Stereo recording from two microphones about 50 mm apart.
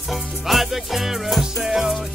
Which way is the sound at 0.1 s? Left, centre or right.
Centre.